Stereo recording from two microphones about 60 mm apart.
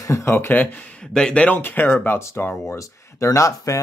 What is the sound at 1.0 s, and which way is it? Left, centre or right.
Speech, centre.